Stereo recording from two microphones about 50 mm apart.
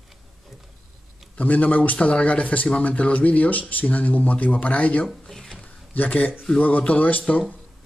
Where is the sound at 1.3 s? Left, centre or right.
Left.